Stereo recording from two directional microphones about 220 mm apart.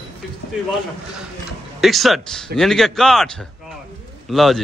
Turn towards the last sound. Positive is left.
turn(degrees=0)  # may be behind; listen again after turning